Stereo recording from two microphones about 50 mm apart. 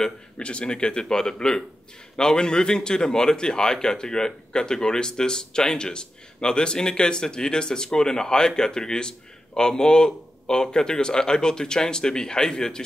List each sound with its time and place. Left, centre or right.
0.4 s speech: left